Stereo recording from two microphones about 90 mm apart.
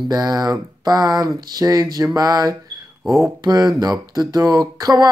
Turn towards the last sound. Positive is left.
turn(degrees=-45)  # may be behind; listen again after turning